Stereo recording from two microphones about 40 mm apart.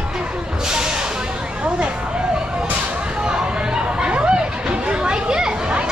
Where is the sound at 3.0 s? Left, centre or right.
Right.